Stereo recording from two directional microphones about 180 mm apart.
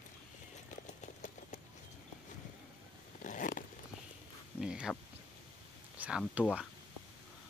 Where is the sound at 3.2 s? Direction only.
45° left (ahead or behind).